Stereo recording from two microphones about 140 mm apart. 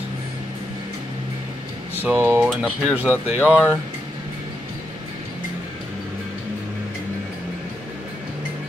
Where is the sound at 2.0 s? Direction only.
10° right (ahead or behind).